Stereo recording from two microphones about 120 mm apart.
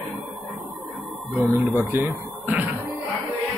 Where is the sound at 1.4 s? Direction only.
15° right (ahead or behind).